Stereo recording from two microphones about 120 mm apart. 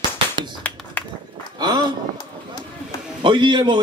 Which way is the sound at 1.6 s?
35° right (ahead or behind).